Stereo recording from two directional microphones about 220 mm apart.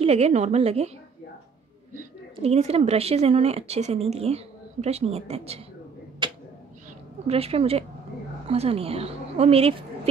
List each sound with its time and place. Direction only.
0.0 s speech: 30° right (ahead or behind)
2.3 s speech: 30° right (ahead or behind)
6.2 s a sound: 20° right (ahead or behind)
7.2 s speech: 25° right (ahead or behind)